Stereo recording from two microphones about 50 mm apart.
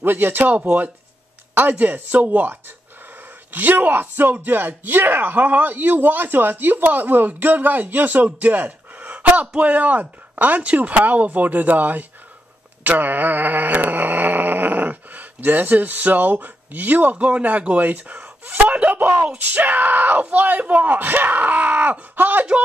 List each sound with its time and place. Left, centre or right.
0.0 s speech: right
1.5 s speech: right
12.8 s a sound: right
17.2 s speech: right